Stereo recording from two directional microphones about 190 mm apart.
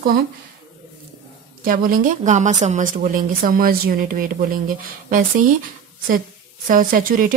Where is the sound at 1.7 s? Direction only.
45° right (ahead or behind).